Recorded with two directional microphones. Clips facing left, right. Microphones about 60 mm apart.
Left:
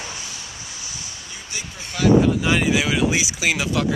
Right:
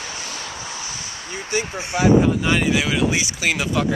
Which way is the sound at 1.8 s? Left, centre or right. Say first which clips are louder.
Even; right.